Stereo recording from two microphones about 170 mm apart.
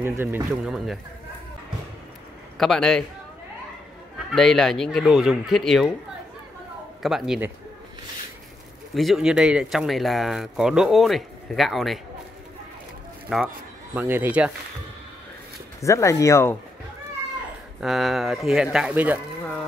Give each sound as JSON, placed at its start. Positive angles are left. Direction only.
{"t": 0.0, "sound": "speech", "side_deg": -15}
{"t": 2.5, "sound": "speech", "side_deg": 0}
{"t": 4.3, "sound": "speech", "side_deg": 0}
{"t": 7.0, "sound": "speech", "side_deg": 0}
{"t": 8.9, "sound": "speech", "side_deg": 0}
{"t": 13.3, "sound": "speech", "side_deg": 0}
{"t": 13.9, "sound": "speech", "side_deg": -10}
{"t": 15.8, "sound": "speech", "side_deg": 15}
{"t": 17.7, "sound": "speech", "side_deg": 0}